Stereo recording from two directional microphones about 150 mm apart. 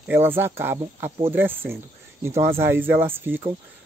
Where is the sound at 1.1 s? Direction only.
40° right (ahead or behind).